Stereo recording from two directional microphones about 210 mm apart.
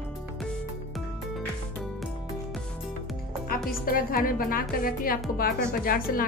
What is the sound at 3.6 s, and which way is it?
A woman's voice, 45° left (ahead or behind).